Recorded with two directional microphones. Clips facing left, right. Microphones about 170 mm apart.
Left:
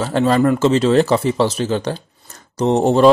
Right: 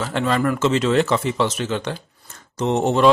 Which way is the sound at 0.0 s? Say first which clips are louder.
Left 6 dB; 35° left (ahead or behind).